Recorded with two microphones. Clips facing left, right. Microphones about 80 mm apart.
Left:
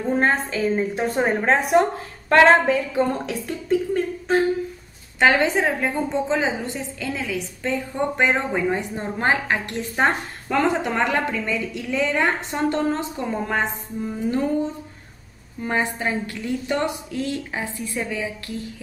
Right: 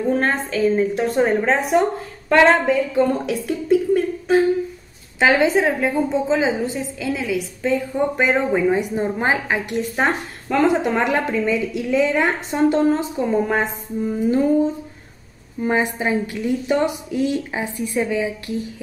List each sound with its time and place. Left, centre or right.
0.3 s a woman's voice: centre
0.7 s a woman's voice: centre
15.6 s a woman's voice: centre